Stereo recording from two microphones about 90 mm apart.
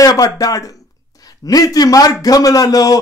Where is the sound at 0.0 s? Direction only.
45° left (ahead or behind).